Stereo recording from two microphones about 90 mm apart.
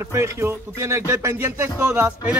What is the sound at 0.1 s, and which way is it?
Speech, 30° right (ahead or behind).